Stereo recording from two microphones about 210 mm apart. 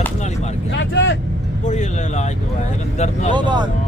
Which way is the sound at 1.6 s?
35° left (ahead or behind).